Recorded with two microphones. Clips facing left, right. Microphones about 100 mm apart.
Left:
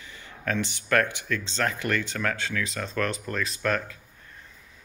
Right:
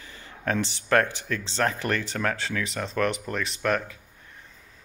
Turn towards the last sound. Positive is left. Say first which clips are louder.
# right 1 dB
turn(degrees=-25)  # may be behind; listen again after turning